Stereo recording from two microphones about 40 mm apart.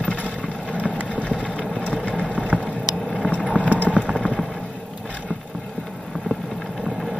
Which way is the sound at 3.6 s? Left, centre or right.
Right.